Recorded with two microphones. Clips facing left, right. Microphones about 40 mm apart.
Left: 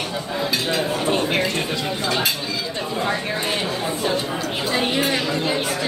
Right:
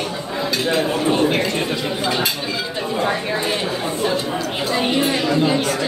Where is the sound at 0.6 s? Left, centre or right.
Right.